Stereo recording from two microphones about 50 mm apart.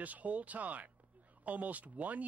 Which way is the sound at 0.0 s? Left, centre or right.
Right.